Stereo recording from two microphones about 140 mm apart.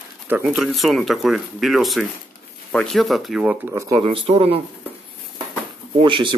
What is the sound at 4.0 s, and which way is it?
Speech, 40° right (ahead or behind).